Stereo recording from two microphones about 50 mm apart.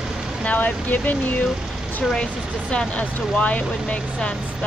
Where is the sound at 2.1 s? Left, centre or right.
Centre.